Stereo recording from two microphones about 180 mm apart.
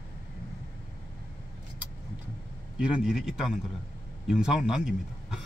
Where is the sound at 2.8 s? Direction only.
5° right (ahead or behind).